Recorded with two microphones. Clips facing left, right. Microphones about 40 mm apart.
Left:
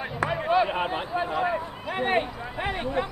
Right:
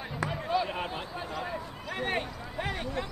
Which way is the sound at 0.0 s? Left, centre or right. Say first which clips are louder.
Left 7 dB; left.